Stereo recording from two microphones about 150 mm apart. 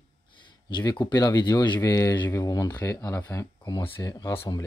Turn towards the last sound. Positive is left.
turn(degrees=25)  # may be behind; listen again after turning